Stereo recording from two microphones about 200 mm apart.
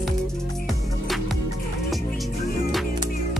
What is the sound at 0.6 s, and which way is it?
Music, centre (ahead or behind).